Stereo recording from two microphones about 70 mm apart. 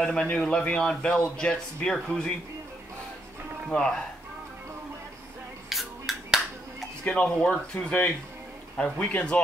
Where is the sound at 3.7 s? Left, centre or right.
Centre.